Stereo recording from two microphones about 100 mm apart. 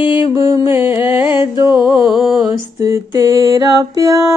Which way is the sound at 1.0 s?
60° left (ahead or behind).